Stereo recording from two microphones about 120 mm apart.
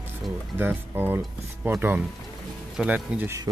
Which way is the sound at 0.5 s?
15° right (ahead or behind).